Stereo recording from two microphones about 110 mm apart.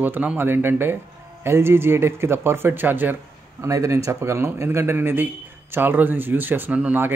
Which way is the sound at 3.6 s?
30° right (ahead or behind).